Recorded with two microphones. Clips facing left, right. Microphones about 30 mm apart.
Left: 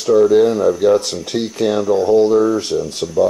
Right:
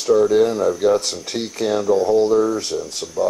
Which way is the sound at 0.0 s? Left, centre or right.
Centre.